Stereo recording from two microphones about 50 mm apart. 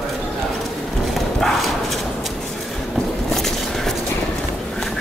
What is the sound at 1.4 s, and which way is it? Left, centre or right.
Clip-clop, centre.